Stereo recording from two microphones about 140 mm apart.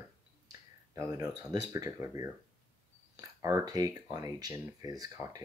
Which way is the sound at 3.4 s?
20° right (ahead or behind).